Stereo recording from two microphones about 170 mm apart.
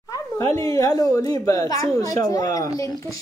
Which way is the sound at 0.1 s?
20° left (ahead or behind).